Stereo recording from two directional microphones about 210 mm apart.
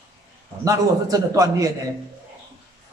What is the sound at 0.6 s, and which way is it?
A man's voice, 15° right (ahead or behind).